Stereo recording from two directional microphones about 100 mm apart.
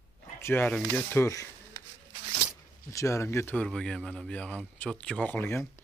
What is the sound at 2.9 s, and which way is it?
Speech, 30° left (ahead or behind).